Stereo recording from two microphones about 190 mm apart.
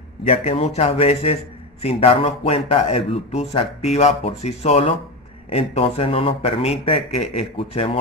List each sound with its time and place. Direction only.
0.3 s a man's voice: 35° left (ahead or behind)